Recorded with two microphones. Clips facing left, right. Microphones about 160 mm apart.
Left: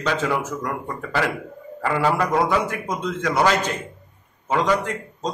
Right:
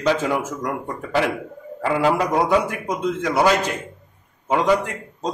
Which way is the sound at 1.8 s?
15° right (ahead or behind).